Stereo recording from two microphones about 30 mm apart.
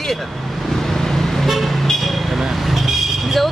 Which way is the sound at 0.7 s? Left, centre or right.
Centre.